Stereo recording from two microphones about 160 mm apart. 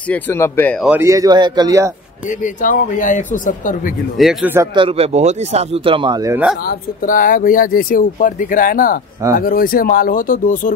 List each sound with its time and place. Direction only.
0.1 s speech: 15° left (ahead or behind)
0.8 s a man's voice: 15° right (ahead or behind)
2.2 s speech: 55° left (ahead or behind)
4.2 s speech: 5° right (ahead or behind)
4.7 s speech: 35° right (ahead or behind)
6.6 s speech: 65° left (ahead or behind)